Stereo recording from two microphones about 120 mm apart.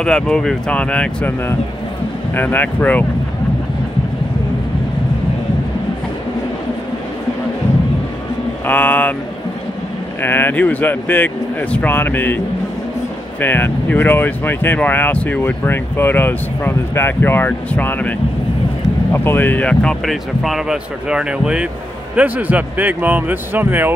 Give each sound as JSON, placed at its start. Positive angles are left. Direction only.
{"t": 0.0, "sound": "speech", "side_deg": 5}
{"t": 2.3, "sound": "speech", "side_deg": 15}
{"t": 8.6, "sound": "speech", "side_deg": 15}
{"t": 10.2, "sound": "speech", "side_deg": 15}
{"t": 13.4, "sound": "speech", "side_deg": 15}
{"t": 19.1, "sound": "speech", "side_deg": 15}